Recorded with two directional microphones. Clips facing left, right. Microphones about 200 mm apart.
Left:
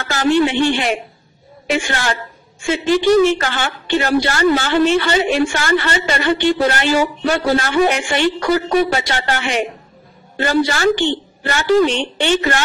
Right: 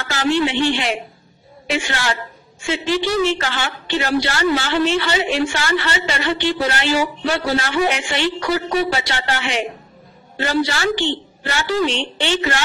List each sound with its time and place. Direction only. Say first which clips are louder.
0.1 s a woman's voice: left 4 dB; 50° left (ahead or behind)